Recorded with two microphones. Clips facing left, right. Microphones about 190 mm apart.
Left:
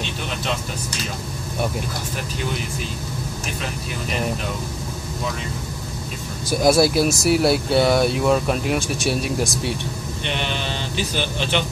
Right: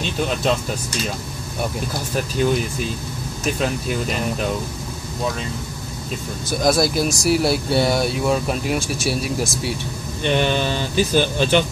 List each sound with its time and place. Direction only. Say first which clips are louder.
6.6 s speech: left 2 dB; 5° left (ahead or behind)
10.2 s speech: right 8 dB; 45° right (ahead or behind)